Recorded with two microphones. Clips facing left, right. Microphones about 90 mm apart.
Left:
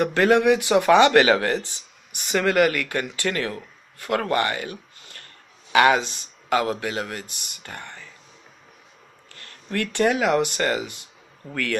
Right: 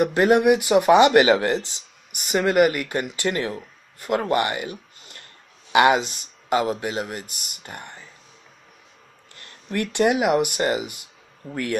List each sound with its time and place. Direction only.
0.0 s a man's voice: 15° right (ahead or behind)
9.3 s a sound: 25° right (ahead or behind)
9.8 s speech: 20° right (ahead or behind)